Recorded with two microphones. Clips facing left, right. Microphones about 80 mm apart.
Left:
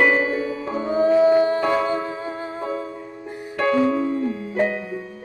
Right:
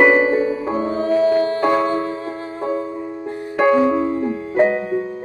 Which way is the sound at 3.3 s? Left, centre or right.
Centre.